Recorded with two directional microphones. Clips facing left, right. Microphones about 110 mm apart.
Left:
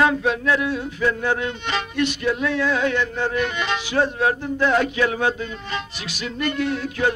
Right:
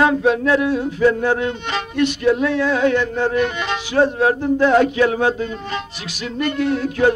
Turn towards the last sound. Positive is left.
turn(degrees=-40)  # may be behind; listen again after turning